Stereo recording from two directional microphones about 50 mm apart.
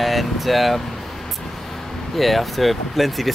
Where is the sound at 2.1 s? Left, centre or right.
Centre.